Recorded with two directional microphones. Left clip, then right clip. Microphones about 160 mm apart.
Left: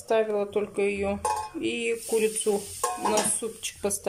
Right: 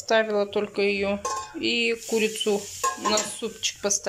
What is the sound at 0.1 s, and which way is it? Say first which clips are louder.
Speech: right 2 dB; 10° left (ahead or behind).